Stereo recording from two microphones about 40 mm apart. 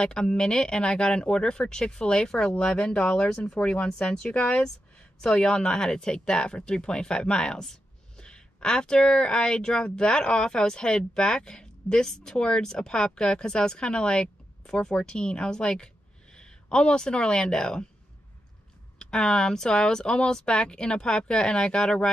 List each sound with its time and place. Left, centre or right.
0.0 s a woman's voice: centre
3.7 s a woman's voice: left
4.3 s speech: left
5.2 s a woman's voice: centre
18.9 s a woman's voice: centre